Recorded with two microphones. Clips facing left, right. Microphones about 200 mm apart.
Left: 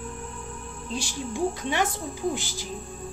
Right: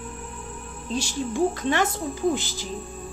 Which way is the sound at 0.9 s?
10° left (ahead or behind).